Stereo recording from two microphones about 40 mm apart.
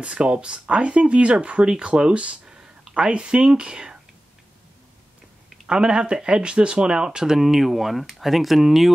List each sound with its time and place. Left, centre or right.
0.0 s speech: right
2.1 s speech: right
2.4 s a sound: right
5.7 s speech: centre
7.3 s speech: centre